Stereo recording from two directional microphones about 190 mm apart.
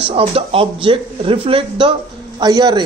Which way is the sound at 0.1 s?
30° right (ahead or behind).